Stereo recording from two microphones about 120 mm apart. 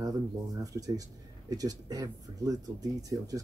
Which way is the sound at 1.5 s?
30° right (ahead or behind).